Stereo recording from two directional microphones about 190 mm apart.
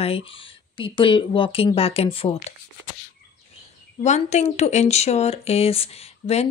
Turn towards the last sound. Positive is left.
turn(degrees=30)  # may be behind; listen again after turning